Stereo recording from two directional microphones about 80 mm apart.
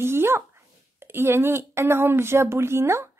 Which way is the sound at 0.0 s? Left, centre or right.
Right.